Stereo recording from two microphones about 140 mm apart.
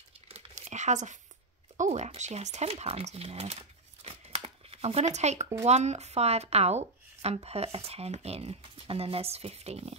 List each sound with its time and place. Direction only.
0.3 s a sound: 50° right (ahead or behind)
1.8 s speech: 50° right (ahead or behind)
4.0 s crumpling: 45° right (ahead or behind)
5.7 s speech: 50° right (ahead or behind)